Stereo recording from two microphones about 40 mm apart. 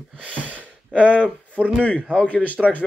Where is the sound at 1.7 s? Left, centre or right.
Left.